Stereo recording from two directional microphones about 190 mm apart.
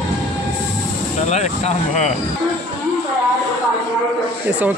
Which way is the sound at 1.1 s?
35° left (ahead or behind).